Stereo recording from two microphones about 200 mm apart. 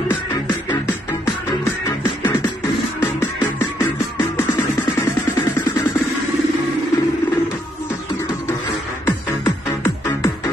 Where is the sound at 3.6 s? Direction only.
15° left (ahead or behind).